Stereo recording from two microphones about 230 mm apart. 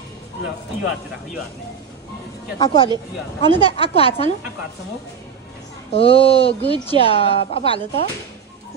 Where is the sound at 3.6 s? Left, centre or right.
Left.